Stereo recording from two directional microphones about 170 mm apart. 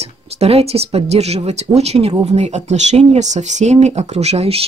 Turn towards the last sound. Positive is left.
turn(degrees=-35)  # may be behind; listen again after turning